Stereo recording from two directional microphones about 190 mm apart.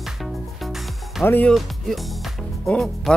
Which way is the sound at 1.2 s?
10° left (ahead or behind).